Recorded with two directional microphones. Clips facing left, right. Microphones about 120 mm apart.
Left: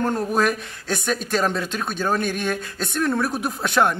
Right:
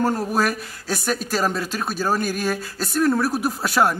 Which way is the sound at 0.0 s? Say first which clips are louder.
Even; 5° right (ahead or behind).